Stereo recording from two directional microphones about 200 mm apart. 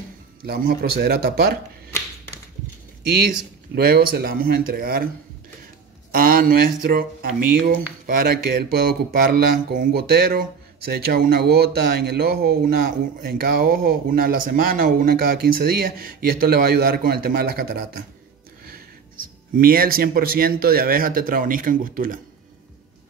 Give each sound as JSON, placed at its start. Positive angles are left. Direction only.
{"t": 0.5, "sound": "speech", "side_deg": -50}
{"t": 3.3, "sound": "speech", "side_deg": -45}
{"t": 6.1, "sound": "speech", "side_deg": -45}
{"t": 19.5, "sound": "speech", "side_deg": -45}